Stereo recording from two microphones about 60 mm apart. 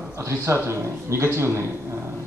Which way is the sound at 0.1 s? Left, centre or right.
Right.